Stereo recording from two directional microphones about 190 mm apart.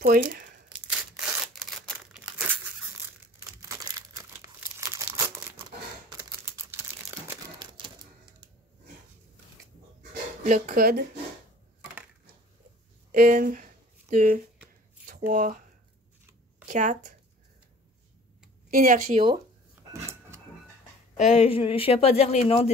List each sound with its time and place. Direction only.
0.0 s crumpling: 50° right (ahead or behind)
0.7 s a sound: 5° right (ahead or behind)
2.1 s crumpling: 10° right (ahead or behind)
3.6 s crumpling: 20° right (ahead or behind)
6.0 s computer keyboard: 15° right (ahead or behind)
10.4 s speech: 45° right (ahead or behind)
13.1 s speech: 50° right (ahead or behind)
16.6 s speech: 40° right (ahead or behind)
18.7 s speech: 45° right (ahead or behind)
19.7 s drawer open or close: 15° right (ahead or behind)
21.5 s speech: 30° left (ahead or behind)